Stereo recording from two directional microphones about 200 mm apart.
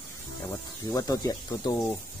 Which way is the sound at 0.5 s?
20° left (ahead or behind).